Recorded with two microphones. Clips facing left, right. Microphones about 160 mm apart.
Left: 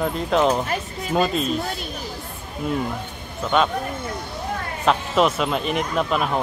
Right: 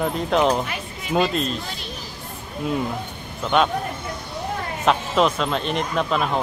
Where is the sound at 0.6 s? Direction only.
40° left (ahead or behind).